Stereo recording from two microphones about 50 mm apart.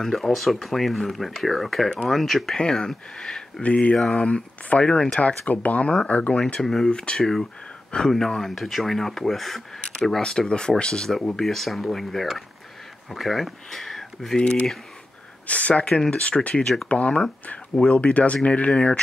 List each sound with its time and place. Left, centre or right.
0.0 s speech: centre
3.6 s speech: left
3.9 s speech: centre
5.5 s speech: left
6.6 s speech: centre
6.9 s speech: centre
7.2 s speech: centre
7.9 s speech: centre
8.3 s speech: centre
9.8 s speech: centre
14.4 s speech: centre
15.9 s speech: centre